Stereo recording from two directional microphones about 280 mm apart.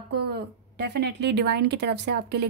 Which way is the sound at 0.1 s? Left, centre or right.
Right.